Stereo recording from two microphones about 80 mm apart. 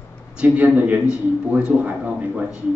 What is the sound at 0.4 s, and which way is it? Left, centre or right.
A man's voice, centre.